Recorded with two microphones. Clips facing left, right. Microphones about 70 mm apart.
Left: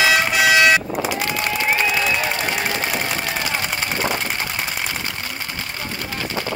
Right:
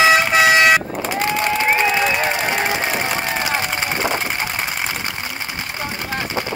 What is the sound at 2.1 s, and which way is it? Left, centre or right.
Crowd, right.